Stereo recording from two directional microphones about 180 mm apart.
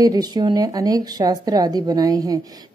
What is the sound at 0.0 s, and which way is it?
A woman's voice, 20° right (ahead or behind).